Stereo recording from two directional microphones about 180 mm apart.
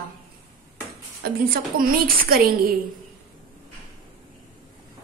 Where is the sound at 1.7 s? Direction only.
55° right (ahead or behind).